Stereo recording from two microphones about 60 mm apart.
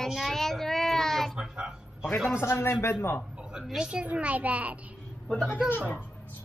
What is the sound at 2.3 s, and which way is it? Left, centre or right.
Speech, left.